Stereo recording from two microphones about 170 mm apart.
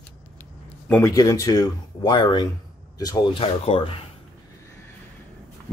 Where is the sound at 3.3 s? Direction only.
35° left (ahead or behind).